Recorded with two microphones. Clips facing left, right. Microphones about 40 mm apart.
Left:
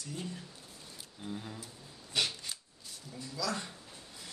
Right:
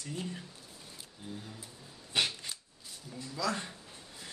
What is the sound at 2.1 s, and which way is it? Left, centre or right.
Shuffling cards, right.